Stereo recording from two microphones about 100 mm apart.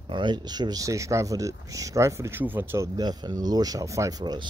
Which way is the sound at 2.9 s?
40° right (ahead or behind).